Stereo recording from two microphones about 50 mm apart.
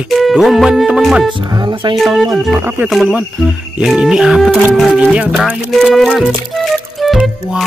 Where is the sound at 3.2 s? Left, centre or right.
Centre.